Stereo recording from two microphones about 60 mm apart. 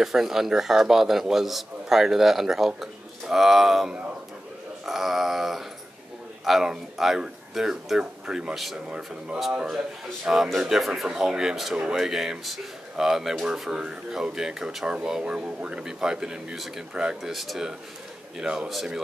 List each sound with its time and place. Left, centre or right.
0.0 s a man's voice: centre
10.2 s a man's voice: centre
16.9 s speech: centre
17.3 s a man's voice: centre